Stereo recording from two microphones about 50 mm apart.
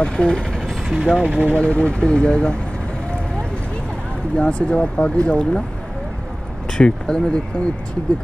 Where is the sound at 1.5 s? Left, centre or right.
Left.